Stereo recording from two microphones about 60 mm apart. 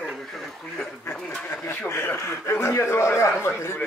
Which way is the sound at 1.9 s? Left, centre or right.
Left.